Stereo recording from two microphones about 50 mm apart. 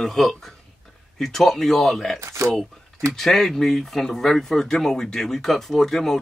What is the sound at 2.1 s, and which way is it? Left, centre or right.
Speech, right.